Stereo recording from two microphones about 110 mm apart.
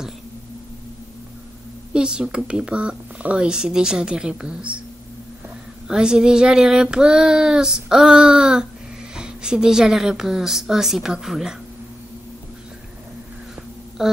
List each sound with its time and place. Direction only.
2.0 s speech: 10° right (ahead or behind)
5.9 s child singing: 5° right (ahead or behind)
14.0 s a sound: 5° right (ahead or behind)